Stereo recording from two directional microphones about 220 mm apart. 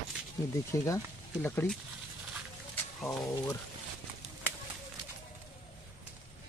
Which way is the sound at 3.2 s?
15° left (ahead or behind).